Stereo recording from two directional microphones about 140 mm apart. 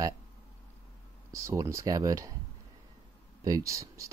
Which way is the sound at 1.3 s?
20° right (ahead or behind).